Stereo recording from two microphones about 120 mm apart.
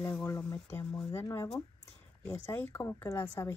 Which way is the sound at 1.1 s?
20° left (ahead or behind).